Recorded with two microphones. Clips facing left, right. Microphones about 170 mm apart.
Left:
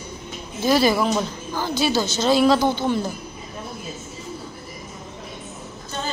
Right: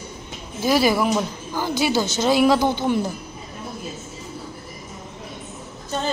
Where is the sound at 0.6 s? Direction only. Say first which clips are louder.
Even; 10° right (ahead or behind).